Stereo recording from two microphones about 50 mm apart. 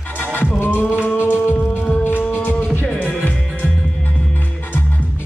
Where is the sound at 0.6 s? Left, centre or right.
Left.